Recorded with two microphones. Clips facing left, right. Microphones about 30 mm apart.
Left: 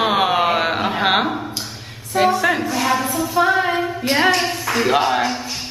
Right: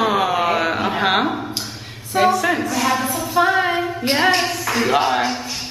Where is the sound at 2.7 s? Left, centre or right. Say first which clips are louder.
Even; centre.